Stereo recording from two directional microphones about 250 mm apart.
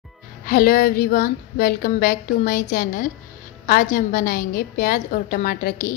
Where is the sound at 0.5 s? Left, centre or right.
Left.